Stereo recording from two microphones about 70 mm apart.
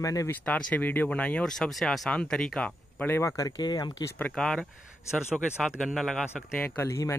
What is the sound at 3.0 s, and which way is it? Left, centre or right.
Speech, left.